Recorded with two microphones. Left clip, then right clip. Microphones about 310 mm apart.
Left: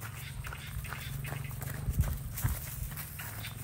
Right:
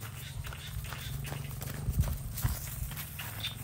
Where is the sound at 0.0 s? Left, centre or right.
Centre.